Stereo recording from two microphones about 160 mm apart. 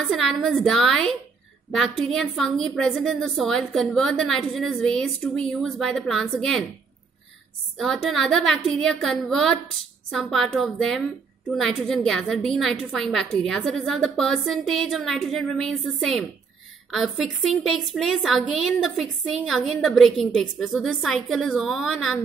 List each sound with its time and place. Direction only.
0.0 s a woman's voice: centre (ahead or behind)
7.7 s a woman's voice: centre (ahead or behind)